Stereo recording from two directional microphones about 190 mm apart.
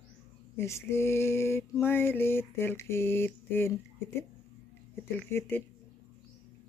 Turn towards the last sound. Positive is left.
turn(degrees=10)  # may be behind; listen again after turning